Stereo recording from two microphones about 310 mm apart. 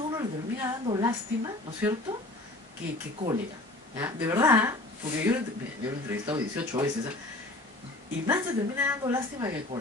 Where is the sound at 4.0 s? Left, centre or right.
Centre.